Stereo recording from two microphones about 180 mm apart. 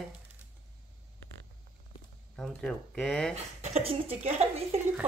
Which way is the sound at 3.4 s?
40° right (ahead or behind).